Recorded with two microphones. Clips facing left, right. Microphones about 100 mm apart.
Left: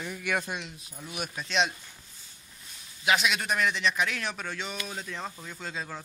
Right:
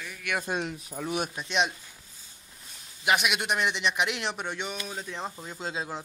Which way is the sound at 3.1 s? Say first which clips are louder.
Even; 10° right (ahead or behind).